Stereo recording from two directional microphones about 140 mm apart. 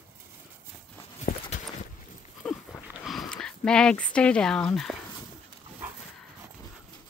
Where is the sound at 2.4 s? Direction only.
5° left (ahead or behind).